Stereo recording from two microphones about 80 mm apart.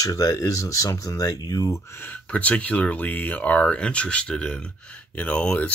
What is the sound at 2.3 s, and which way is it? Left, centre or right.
Speech, centre.